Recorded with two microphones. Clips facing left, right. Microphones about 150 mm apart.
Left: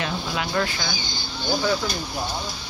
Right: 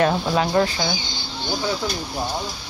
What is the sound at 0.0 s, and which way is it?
Speech, 40° right (ahead or behind).